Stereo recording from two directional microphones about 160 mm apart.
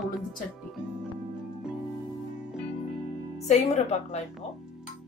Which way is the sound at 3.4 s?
40° left (ahead or behind).